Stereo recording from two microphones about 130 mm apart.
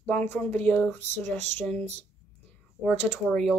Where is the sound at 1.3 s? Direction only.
60° right (ahead or behind).